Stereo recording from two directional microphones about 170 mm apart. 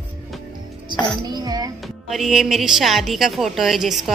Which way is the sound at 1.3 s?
25° right (ahead or behind).